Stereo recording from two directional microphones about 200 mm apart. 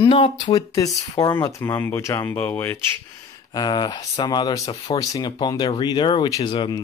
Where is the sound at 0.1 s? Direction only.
25° left (ahead or behind).